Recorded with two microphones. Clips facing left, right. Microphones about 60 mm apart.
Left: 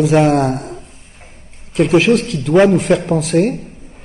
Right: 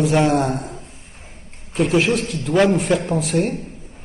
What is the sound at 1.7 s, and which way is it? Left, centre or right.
A man's voice, left.